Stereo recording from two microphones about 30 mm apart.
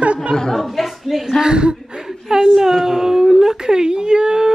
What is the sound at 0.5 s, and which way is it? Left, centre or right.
Speech, centre.